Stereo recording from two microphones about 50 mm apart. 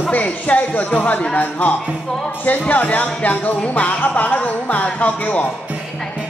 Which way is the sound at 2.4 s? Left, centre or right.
Left.